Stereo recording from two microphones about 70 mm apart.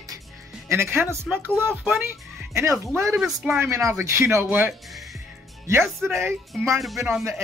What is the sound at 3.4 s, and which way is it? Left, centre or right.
Speech, centre.